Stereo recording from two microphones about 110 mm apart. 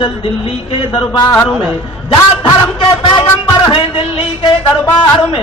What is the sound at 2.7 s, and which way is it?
A man's voice, 50° left (ahead or behind).